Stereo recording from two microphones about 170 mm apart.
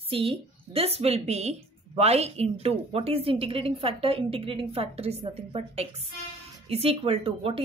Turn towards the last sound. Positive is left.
turn(degrees=-35)  # may be behind; listen again after turning